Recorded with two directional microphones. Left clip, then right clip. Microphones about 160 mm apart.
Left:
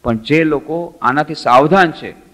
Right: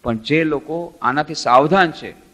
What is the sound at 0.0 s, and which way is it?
A man's voice, 20° right (ahead or behind).